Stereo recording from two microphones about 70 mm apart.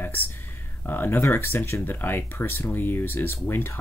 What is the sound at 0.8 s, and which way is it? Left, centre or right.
Speech, left.